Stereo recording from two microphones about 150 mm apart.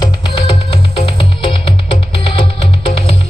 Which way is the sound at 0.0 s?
30° left (ahead or behind).